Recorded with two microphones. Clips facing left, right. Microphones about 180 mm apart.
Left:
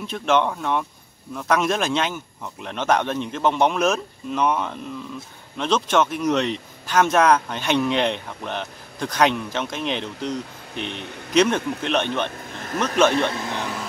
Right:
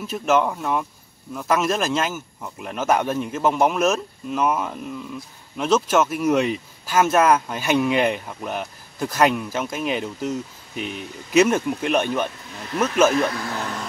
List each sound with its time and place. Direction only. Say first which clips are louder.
0.0 s speech: right 1 dB; 5° right (ahead or behind)
11.0 s speech: right 1 dB; 65° left (ahead or behind)
11.3 s speech: right 2 dB; 10° right (ahead or behind)
13.1 s speech: right 1 dB; 25° left (ahead or behind)